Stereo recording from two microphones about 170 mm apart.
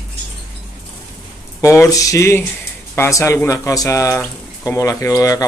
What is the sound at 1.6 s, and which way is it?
Speech, 20° left (ahead or behind).